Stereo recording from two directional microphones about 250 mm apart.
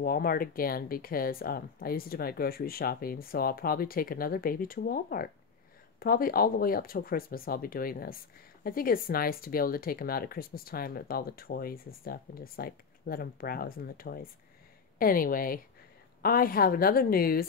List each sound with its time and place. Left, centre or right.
0.0 s speech: left